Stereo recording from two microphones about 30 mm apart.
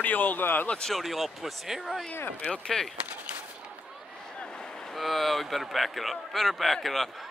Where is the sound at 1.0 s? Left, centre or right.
Centre.